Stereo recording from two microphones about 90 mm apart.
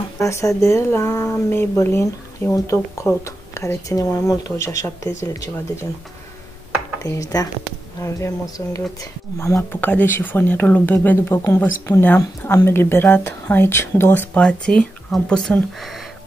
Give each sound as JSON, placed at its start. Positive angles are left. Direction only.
{"t": 0.2, "sound": "speech", "side_deg": 35}
{"t": 7.0, "sound": "speech", "side_deg": 40}
{"t": 14.3, "sound": "speech", "side_deg": 10}